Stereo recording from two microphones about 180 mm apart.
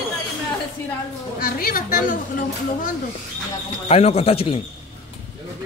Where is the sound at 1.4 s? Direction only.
55° left (ahead or behind).